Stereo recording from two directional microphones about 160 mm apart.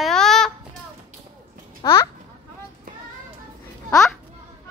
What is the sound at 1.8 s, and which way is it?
Speech, 15° left (ahead or behind).